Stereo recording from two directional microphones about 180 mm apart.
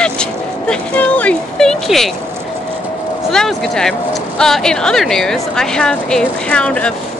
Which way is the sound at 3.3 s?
5° left (ahead or behind).